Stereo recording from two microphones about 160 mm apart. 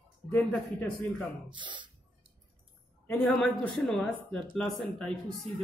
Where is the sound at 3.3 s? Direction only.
Centre (ahead or behind).